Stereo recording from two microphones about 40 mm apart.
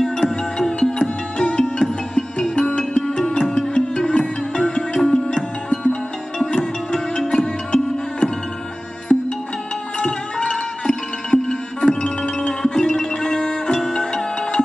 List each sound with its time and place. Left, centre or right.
0.0 s music: centre
6.3 s music: centre